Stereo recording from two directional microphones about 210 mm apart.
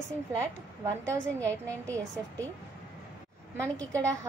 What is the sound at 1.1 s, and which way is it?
A woman's voice, 5° left (ahead or behind).